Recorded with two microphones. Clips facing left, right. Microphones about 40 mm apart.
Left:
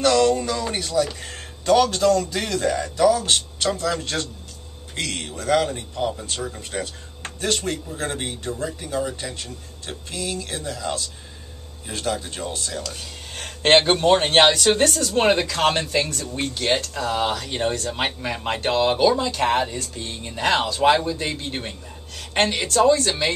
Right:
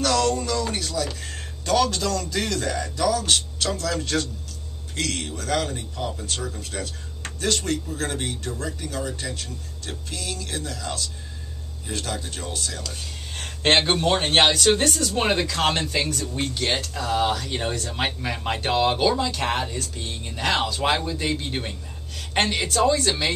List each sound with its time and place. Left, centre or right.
0.0 s speech: centre